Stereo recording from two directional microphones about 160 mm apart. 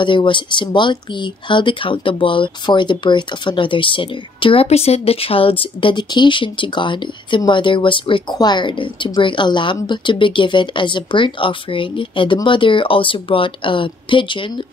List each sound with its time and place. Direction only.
0.0 s speech: 30° left (ahead or behind)